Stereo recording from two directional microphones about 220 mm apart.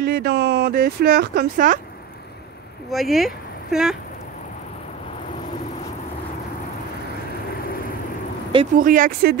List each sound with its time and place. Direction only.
0.0 s speech: 45° right (ahead or behind)
2.9 s speech: centre (ahead or behind)
8.7 s speech: 40° right (ahead or behind)